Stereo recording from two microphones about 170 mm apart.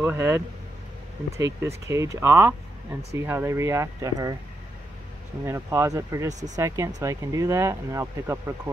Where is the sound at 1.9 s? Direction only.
15° right (ahead or behind).